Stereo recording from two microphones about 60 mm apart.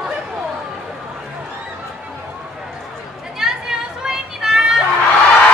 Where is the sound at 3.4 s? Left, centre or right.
Centre.